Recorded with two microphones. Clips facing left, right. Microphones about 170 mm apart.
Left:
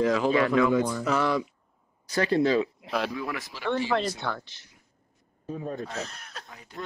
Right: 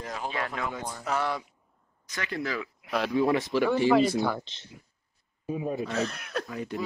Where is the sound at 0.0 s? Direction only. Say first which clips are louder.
Left 11 dB; 90° left.